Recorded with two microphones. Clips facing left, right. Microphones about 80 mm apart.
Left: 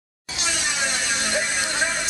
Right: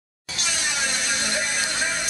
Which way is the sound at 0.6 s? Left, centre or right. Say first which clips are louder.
Even; centre.